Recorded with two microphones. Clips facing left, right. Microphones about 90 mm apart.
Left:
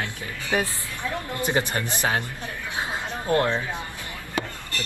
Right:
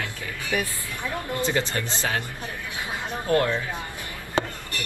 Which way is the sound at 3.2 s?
25° left (ahead or behind).